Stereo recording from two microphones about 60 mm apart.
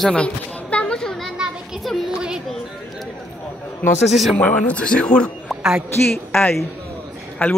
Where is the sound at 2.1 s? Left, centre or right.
Centre.